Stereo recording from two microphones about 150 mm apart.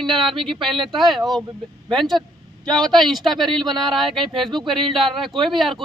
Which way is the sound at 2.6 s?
5° left (ahead or behind).